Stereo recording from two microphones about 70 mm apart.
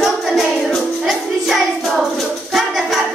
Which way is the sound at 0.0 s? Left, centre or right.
Centre.